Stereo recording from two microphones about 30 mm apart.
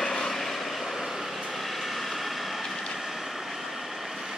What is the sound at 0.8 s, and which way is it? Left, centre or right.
Vehicle, centre.